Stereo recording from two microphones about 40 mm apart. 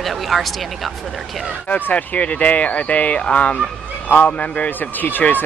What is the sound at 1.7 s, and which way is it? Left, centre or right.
Speech, left.